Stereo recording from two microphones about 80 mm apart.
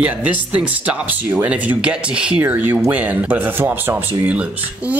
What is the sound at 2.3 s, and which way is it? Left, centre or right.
Speech, right.